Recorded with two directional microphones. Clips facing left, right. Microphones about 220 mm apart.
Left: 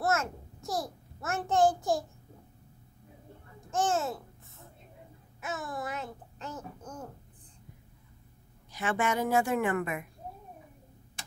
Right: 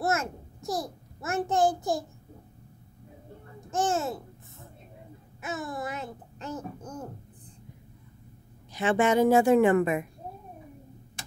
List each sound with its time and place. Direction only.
0.0 s a child's voice: 15° right (ahead or behind)
3.7 s a child's voice: 10° right (ahead or behind)
5.4 s a child's voice: 5° right (ahead or behind)
8.7 s a woman's voice: 25° right (ahead or behind)